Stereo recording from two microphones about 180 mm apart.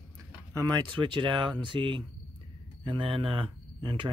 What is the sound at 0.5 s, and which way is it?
Speech, 20° right (ahead or behind).